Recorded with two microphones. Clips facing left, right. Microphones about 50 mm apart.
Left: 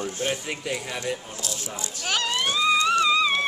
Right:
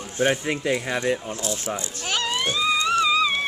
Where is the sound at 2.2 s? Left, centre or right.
Centre.